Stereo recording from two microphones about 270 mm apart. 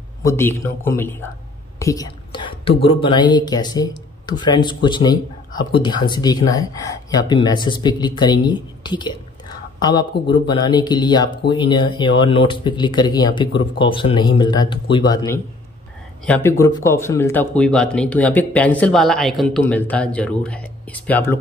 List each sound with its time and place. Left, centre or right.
0.2 s speech: centre